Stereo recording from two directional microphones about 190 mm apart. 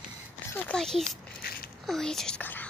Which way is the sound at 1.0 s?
50° left (ahead or behind).